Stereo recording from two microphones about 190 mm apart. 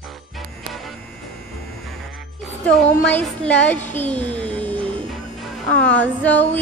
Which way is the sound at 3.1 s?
10° left (ahead or behind).